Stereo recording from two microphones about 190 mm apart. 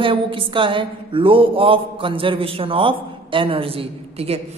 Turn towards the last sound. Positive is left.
turn(degrees=-30)  # may be behind; listen again after turning